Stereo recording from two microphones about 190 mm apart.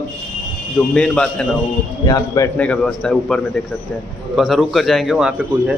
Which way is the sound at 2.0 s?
20° left (ahead or behind).